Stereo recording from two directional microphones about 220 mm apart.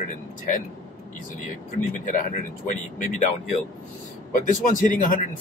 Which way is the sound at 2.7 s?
35° left (ahead or behind).